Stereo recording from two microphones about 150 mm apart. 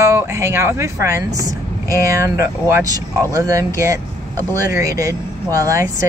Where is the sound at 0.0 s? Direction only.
20° right (ahead or behind).